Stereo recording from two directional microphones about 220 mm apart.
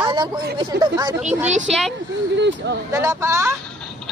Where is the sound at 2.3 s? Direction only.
50° right (ahead or behind).